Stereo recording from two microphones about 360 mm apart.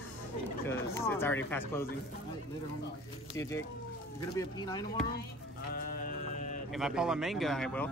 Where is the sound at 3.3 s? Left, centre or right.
Centre.